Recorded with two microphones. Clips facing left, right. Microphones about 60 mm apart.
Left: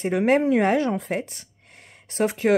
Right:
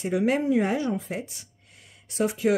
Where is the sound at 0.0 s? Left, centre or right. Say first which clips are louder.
Left 4 dB; left.